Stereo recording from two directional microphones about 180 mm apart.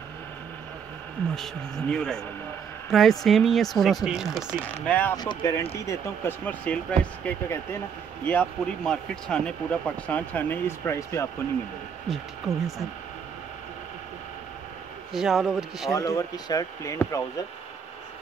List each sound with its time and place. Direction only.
1.3 s speech: centre (ahead or behind)
4.8 s speech: 10° left (ahead or behind)
5.1 s speech: 20° left (ahead or behind)
12.1 s speech: centre (ahead or behind)
15.1 s speech: centre (ahead or behind)
15.9 s speech: 20° left (ahead or behind)